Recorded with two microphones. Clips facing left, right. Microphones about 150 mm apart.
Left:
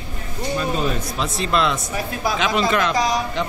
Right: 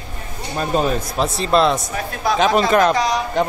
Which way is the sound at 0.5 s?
45° right (ahead or behind).